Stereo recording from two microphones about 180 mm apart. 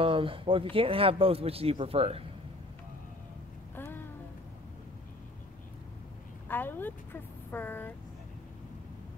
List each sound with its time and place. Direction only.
0.0 s speech: 30° right (ahead or behind)
3.7 s a sound: 10° left (ahead or behind)
6.5 s speech: 10° left (ahead or behind)